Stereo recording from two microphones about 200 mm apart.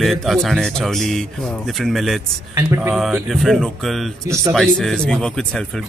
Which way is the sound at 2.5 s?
15° right (ahead or behind).